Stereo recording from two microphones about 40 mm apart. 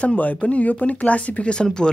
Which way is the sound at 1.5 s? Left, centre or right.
Left.